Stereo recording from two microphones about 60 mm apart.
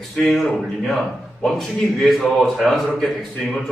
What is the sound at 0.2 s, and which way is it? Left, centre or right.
Speech, centre.